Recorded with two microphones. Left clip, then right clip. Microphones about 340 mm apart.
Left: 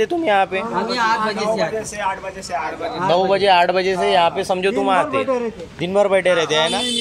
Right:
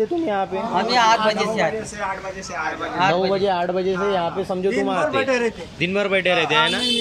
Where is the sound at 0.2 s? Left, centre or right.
Left.